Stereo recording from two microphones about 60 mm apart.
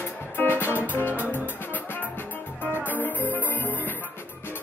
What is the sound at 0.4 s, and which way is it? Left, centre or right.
Music, left.